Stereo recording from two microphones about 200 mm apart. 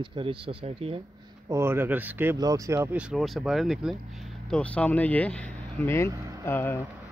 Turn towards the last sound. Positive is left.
turn(degrees=10)  # may be behind; listen again after turning